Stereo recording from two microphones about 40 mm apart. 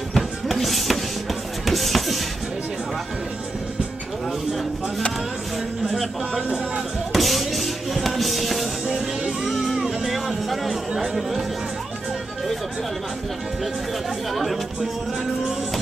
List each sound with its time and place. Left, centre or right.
0.1 s music: centre
5.9 s speech: centre
7.1 s music: centre
8.8 s music: centre
9.5 s music: centre
10.0 s speech: centre
14.3 s speech: centre